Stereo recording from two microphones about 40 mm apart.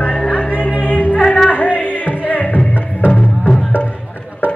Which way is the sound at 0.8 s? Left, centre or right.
Left.